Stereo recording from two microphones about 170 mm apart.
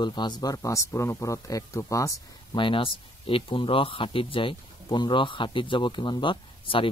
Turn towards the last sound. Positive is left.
turn(degrees=30)  # may be behind; listen again after turning